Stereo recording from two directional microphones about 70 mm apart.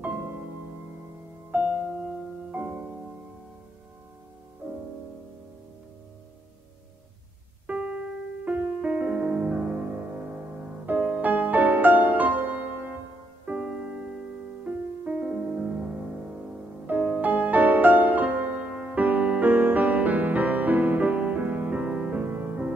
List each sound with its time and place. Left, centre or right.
1.5 s music: right
7.6 s music: centre
10.9 s music: right